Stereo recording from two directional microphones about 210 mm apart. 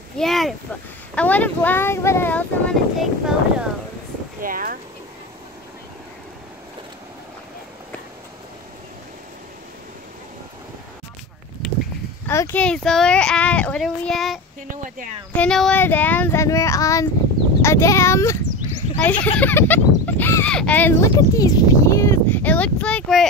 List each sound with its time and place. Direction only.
0.2 s a child's voice: centre (ahead or behind)
3.0 s a child's voice: 5° right (ahead or behind)
4.4 s speech: 40° right (ahead or behind)
11.6 s a sound: centre (ahead or behind)
12.3 s a child's voice: 10° left (ahead or behind)
18.4 s a sound: 35° right (ahead or behind)
19.2 s speech: 10° left (ahead or behind)